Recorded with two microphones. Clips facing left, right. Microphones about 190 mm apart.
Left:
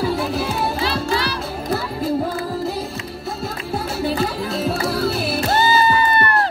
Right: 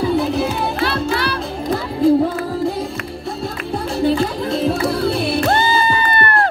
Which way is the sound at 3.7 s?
5° left (ahead or behind).